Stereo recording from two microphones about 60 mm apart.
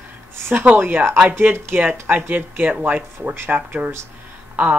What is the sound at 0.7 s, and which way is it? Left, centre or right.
Speech, right.